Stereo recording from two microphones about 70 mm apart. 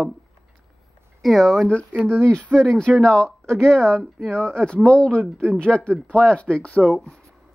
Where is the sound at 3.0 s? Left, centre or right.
Centre.